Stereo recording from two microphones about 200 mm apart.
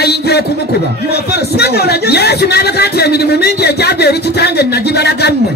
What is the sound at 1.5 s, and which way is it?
A man's voice, 55° left (ahead or behind).